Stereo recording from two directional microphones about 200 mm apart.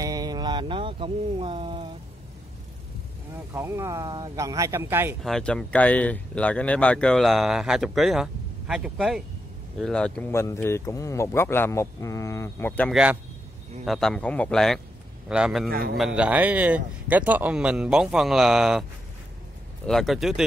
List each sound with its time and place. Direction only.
0.0 s speech: 20° right (ahead or behind)
3.5 s speech: 15° right (ahead or behind)
5.2 s speech: 5° left (ahead or behind)
12.9 s speech: 5° right (ahead or behind)
15.7 s a man's voice: 50° right (ahead or behind)
16.0 s speech: 5° right (ahead or behind)
19.9 s speech: centre (ahead or behind)